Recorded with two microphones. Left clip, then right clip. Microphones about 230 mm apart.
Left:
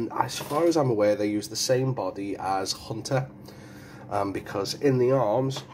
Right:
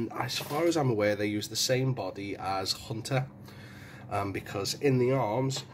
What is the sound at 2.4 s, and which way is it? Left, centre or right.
Speech, right.